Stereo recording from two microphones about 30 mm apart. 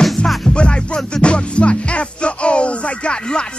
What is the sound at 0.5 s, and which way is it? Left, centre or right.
Music, left.